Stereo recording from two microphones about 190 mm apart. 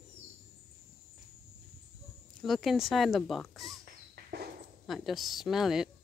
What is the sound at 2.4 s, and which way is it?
Speech, centre (ahead or behind).